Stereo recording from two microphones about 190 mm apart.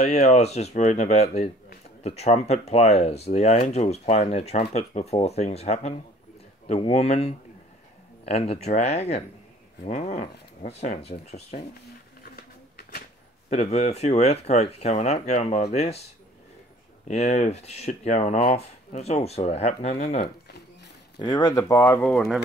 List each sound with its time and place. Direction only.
0.0 s speech: 35° left (ahead or behind)
12.2 s a sound: 50° left (ahead or behind)
13.5 s speech: 35° left (ahead or behind)
17.1 s speech: 35° left (ahead or behind)
20.4 s a sound: 60° left (ahead or behind)
21.2 s speech: 20° left (ahead or behind); by 22.4 s 5° left (ahead or behind)